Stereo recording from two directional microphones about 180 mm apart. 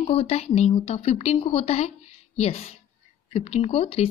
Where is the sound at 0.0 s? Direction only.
35° left (ahead or behind).